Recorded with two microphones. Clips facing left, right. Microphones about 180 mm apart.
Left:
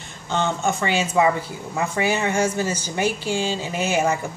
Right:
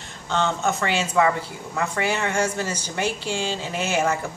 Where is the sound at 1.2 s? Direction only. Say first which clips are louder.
Left 1 dB; 15° left (ahead or behind).